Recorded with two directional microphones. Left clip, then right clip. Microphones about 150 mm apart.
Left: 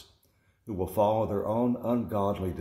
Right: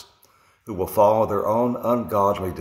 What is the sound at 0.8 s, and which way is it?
Speech, 5° left (ahead or behind).